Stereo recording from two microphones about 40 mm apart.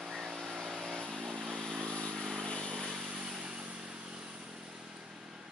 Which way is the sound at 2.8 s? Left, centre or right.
Centre.